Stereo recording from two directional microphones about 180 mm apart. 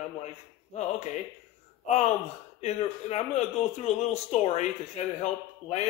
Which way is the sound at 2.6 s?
35° left (ahead or behind).